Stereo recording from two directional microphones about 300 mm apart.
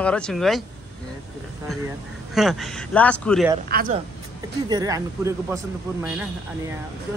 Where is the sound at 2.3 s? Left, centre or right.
Centre.